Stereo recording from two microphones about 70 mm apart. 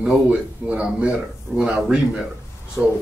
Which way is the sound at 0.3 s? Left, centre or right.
Centre.